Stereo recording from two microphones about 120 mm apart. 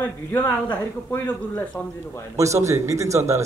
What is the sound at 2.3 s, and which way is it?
Speech, 25° right (ahead or behind).